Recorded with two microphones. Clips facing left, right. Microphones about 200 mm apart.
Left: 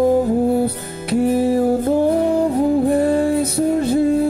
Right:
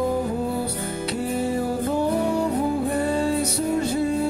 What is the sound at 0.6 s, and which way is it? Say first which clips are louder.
Music: left 4 dB; 55° left (ahead or behind).